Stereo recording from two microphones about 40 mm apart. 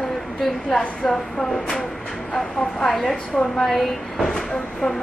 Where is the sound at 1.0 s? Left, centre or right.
Centre.